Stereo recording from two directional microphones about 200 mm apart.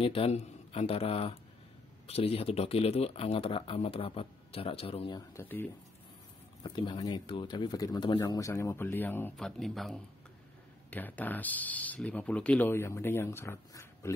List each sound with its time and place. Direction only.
0.0 s speech: 30° left (ahead or behind)
5.3 s speech: 10° left (ahead or behind)
6.6 s speech: 25° left (ahead or behind)